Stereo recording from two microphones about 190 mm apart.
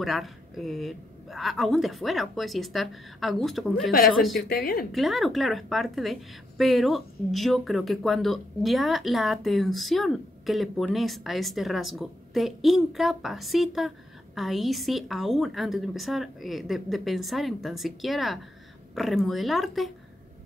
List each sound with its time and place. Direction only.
0.0 s speech: centre (ahead or behind)
4.5 s speech: 50° left (ahead or behind)
4.9 s speech: centre (ahead or behind)